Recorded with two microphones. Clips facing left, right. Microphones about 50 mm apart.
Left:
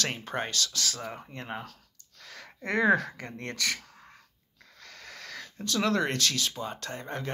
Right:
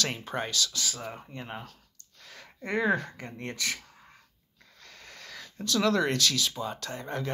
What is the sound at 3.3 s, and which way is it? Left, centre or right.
Speech, left.